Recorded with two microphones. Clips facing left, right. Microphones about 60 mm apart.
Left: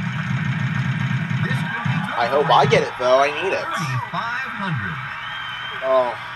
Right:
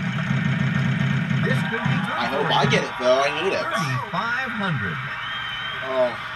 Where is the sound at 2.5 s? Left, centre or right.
Left.